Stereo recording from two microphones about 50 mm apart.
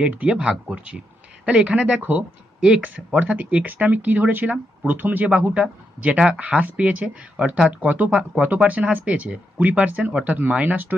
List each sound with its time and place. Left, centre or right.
0.0 s speech: right
2.0 s speech: right
5.3 s speech: right
7.7 s speech: right